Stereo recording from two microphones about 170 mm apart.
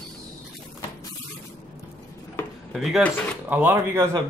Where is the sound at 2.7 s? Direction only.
Centre (ahead or behind).